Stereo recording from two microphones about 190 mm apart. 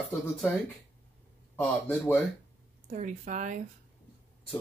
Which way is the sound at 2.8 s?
40° right (ahead or behind).